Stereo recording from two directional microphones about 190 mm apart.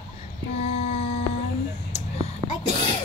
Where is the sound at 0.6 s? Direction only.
35° left (ahead or behind).